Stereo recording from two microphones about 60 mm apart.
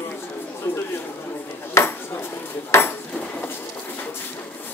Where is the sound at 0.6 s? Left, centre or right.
Left.